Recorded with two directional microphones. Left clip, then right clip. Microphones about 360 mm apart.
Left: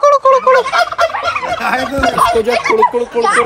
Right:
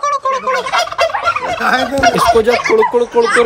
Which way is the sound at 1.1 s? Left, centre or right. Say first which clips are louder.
Right 1 dB; right.